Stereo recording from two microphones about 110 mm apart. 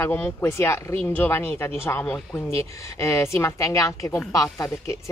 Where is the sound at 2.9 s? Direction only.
25° left (ahead or behind).